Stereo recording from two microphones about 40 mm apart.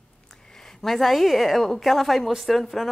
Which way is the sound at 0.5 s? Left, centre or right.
Centre.